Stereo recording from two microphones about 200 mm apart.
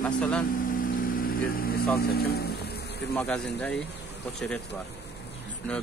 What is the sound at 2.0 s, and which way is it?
Music, 50° left (ahead or behind).